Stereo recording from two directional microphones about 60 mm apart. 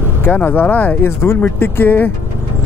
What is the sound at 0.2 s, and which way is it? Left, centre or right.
Speech, left.